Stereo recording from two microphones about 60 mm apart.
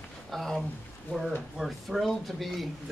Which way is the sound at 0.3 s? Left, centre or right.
Centre.